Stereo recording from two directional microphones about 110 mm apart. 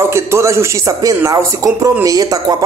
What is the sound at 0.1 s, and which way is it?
Speech, 25° right (ahead or behind).